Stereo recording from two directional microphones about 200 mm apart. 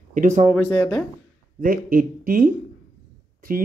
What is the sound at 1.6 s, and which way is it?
Speech, 45° right (ahead or behind).